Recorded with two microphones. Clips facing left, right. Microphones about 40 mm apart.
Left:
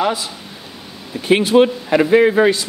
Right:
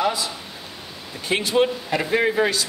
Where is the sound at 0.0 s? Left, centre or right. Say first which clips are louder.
Left 4 dB; left.